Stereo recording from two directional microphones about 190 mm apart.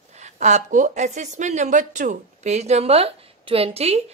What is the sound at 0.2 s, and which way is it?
A woman's voice, 35° right (ahead or behind).